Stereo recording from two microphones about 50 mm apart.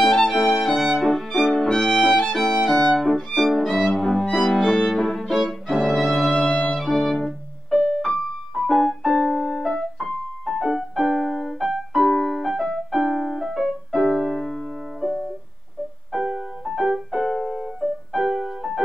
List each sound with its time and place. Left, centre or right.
0.5 s music: centre
3.0 s violin: centre
3.4 s music: centre
4.5 s violin: centre
5.9 s music: centre
6.3 s music: left
6.8 s music: centre
11.6 s keyboard: centre
12.1 s music: centre
12.4 s music: centre
14.4 s piano: centre
14.7 s music: centre
17.5 s keyboard: centre
17.8 s music: centre